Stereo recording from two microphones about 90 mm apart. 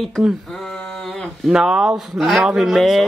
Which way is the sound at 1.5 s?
10° right (ahead or behind).